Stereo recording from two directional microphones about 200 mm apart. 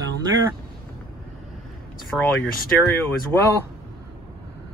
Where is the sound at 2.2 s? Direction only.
10° left (ahead or behind).